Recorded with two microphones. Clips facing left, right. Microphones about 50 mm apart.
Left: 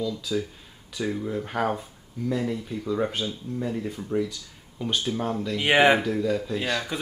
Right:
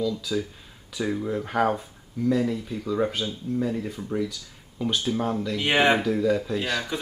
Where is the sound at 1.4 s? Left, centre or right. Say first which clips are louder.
Right 4 dB; centre.